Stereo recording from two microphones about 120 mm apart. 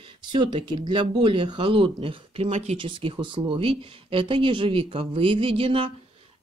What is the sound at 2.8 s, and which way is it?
Speech, 50° right (ahead or behind).